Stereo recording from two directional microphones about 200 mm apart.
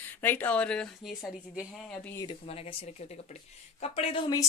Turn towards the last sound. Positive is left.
turn(degrees=20)  # may be behind; listen again after turning